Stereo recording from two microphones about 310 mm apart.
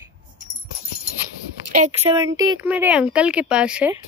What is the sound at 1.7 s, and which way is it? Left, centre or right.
Speech, right.